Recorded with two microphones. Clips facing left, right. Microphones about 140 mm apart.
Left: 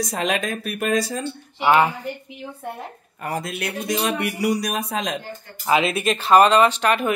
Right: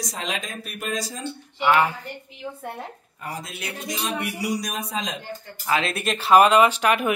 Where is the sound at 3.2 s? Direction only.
60° left (ahead or behind).